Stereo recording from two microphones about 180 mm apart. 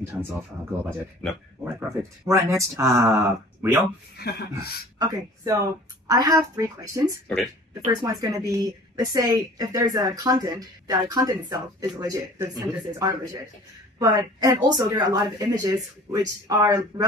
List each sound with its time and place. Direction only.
0.0 s speech: 15° right (ahead or behind)
1.6 s speech: 10° right (ahead or behind)
4.2 s speech: 60° left (ahead or behind)
4.9 s a woman's voice: 20° right (ahead or behind)